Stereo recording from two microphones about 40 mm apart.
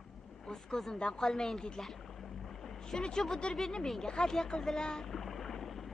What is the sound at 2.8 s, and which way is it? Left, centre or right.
Speech, centre.